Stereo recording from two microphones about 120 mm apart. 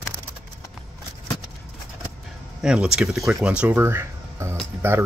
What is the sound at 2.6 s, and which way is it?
Speech, 5° right (ahead or behind).